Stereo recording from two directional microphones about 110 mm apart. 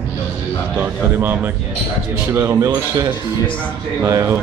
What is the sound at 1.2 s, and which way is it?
Speech, 20° right (ahead or behind).